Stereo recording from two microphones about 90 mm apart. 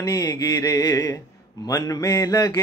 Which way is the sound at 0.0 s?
45° left (ahead or behind).